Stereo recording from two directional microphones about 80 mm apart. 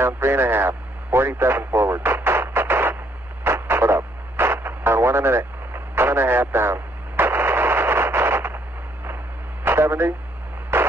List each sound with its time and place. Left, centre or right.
0.0 s speech: right
3.4 s radio: right
10.7 s a sound: right